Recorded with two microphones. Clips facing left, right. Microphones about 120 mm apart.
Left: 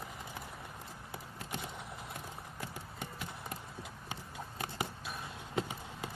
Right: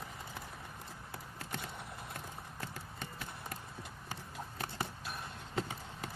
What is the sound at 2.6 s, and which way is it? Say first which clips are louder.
Clip-clop: left 2 dB; 20° left (ahead or behind).